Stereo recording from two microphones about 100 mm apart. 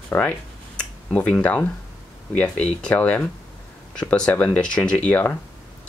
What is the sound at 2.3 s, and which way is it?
Speech, 10° left (ahead or behind).